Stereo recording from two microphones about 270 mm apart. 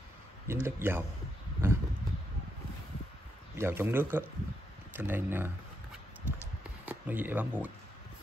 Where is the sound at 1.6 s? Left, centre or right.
Centre.